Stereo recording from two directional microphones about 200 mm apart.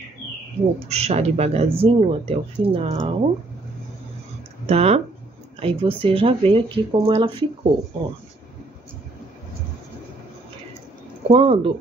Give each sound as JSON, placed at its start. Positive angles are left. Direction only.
{"t": 0.8, "sound": "speech", "side_deg": -30}
{"t": 4.6, "sound": "speech", "side_deg": -30}
{"t": 11.2, "sound": "speech", "side_deg": -30}